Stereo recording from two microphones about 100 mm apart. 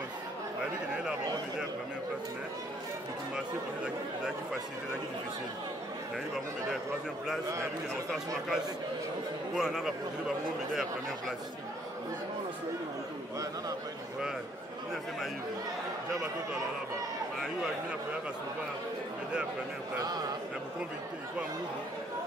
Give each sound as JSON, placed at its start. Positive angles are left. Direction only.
{"t": 9.6, "sound": "a man's voice", "side_deg": -5}
{"t": 20.0, "sound": "a man's voice", "side_deg": -45}